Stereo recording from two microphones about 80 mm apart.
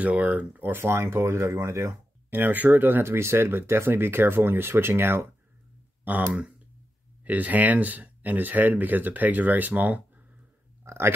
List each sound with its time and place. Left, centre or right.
0.0 s speech: centre; by 2.0 s right
2.3 s speech: right
6.0 s speech: centre
10.9 s speech: right